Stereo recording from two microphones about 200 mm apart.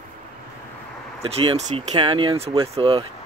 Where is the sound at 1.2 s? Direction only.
30° right (ahead or behind).